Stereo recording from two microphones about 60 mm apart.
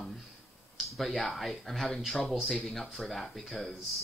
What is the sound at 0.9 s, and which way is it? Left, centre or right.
Speech, centre.